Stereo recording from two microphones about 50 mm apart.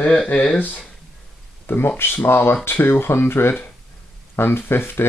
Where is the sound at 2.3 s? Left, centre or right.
Left.